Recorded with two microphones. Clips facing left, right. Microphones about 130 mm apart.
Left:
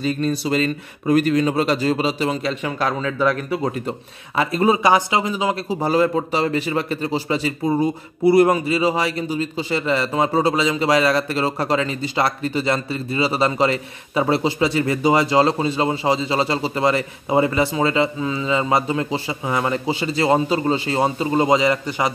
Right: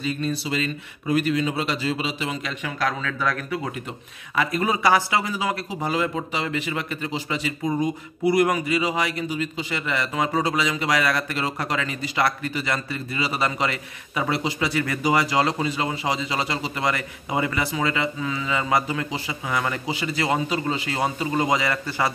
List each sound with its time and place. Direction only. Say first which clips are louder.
0.0 s speech: left 5 dB; 45° left (ahead or behind); by 22.1 s 20° left (ahead or behind)